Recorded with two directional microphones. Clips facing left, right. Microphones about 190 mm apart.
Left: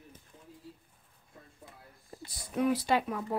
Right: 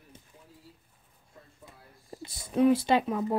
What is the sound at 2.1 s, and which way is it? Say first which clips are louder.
Speech: right 5 dB; 25° right (ahead or behind).